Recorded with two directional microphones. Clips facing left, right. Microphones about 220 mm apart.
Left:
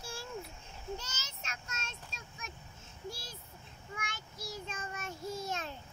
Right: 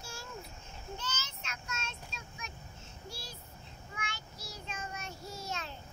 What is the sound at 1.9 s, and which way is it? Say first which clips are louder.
Child singing: right 2 dB; 45° left (ahead or behind).